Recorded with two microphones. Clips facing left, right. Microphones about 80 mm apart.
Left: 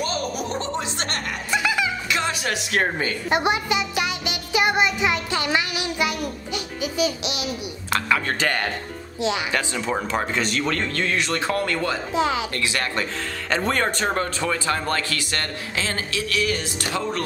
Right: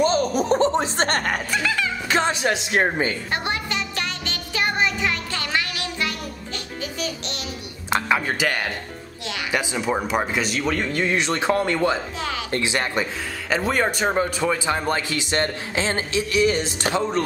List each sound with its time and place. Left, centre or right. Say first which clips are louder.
0.0 s chuckle: right 7 dB; right
1.5 s music: left 5 dB; centre
2.0 s a woman's voice: right 4 dB; right
3.3 s music: left 5 dB; centre
7.9 s speech: right 1 dB; centre
8.4 s speech: even; centre; by 12.0 s right
12.2 s speech: left 6 dB; left
12.4 s speech: right 2 dB; right
13.5 s speech: right 1 dB; centre; by 17.2 s right